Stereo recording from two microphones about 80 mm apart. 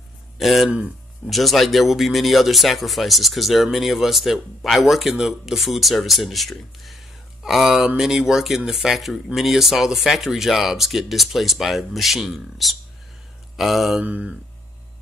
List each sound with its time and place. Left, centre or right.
0.4 s speech: centre
0.7 s speech: centre
1.3 s speech: centre
14.0 s speech: centre